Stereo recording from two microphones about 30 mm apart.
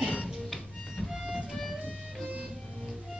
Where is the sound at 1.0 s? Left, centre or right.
Centre.